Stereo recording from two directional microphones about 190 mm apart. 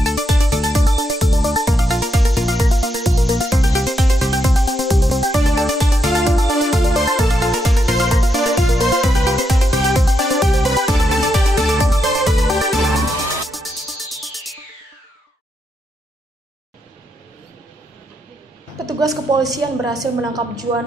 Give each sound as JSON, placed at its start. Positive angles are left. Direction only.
{"t": 0.0, "sound": "music", "side_deg": 0}
{"t": 18.9, "sound": "a sound", "side_deg": -20}
{"t": 19.5, "sound": "a woman's voice", "side_deg": -20}